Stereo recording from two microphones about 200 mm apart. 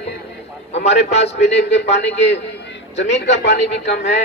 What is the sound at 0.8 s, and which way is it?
Speech, 35° left (ahead or behind).